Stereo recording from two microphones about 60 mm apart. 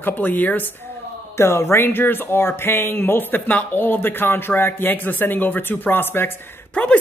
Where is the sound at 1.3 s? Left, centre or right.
Left.